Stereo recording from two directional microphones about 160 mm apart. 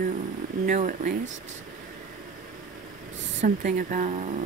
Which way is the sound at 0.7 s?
50° right (ahead or behind).